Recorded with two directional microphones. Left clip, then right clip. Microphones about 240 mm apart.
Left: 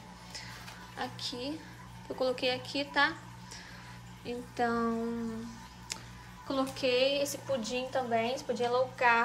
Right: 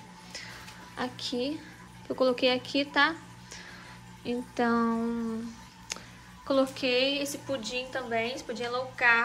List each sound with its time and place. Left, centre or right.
0.3 s a sound: centre
2.0 s speech: centre
5.9 s music: centre
6.4 s a woman's voice: centre